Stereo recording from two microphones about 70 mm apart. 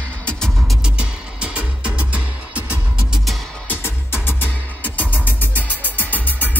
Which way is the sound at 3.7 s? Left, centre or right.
Left.